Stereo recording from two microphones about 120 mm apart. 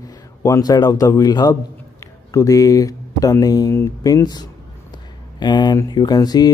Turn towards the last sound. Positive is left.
turn(degrees=35)  # may be behind; listen again after turning